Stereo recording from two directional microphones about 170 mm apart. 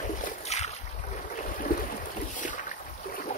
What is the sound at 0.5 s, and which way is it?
Boat, 40° left (ahead or behind).